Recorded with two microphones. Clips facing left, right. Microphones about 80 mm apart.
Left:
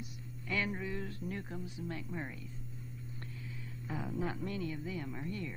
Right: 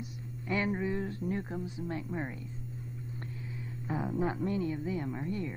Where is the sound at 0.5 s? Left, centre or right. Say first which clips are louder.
Right 5 dB; right.